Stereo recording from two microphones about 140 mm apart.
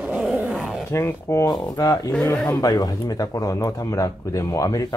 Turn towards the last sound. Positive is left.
turn(degrees=25)  # may be behind; listen again after turning